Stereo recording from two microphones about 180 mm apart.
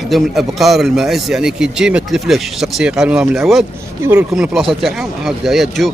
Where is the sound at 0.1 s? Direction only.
Centre (ahead or behind).